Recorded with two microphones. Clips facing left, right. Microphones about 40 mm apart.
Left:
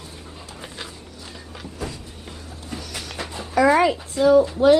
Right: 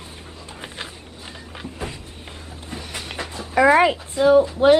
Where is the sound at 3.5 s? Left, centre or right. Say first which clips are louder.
Right 2 dB; right.